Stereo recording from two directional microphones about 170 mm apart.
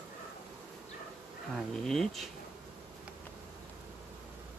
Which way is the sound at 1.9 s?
Centre (ahead or behind).